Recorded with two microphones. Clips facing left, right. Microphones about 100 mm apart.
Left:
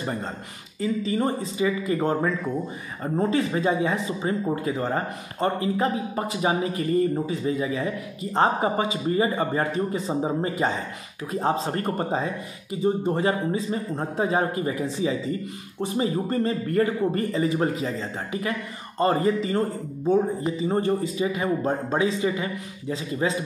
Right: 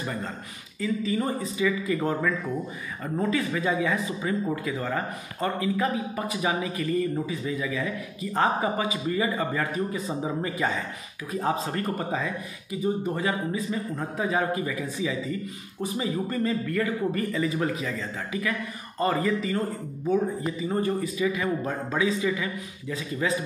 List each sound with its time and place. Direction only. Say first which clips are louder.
0.0 s speech: left 2 dB; 35° left (ahead or behind)